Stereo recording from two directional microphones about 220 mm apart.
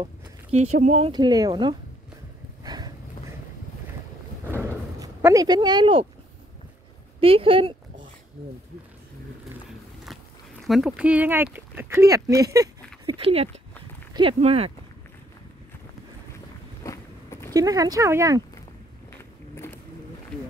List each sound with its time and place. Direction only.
0.7 s speech: 30° right (ahead or behind)
2.6 s a sound: 20° right (ahead or behind)
4.6 s artillery fire: 15° right (ahead or behind)
7.2 s speech: 25° right (ahead or behind)
10.7 s speech: 5° right (ahead or behind); by 14.7 s 25° right (ahead or behind)
16.8 s a sound: 15° left (ahead or behind)
17.5 s speech: 15° right (ahead or behind)